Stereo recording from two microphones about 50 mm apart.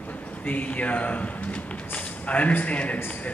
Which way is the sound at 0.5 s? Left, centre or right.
Left.